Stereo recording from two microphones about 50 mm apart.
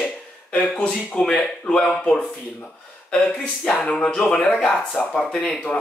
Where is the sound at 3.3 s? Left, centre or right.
Centre.